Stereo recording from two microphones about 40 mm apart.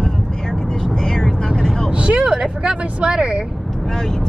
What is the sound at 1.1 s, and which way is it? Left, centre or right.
Vehicle, centre.